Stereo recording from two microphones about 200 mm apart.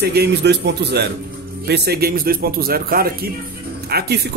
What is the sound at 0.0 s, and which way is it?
A man's voice, 55° right (ahead or behind).